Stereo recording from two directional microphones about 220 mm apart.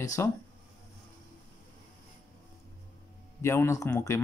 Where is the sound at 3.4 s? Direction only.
10° left (ahead or behind).